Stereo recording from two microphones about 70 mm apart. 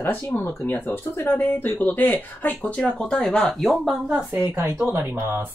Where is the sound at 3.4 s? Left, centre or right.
Centre.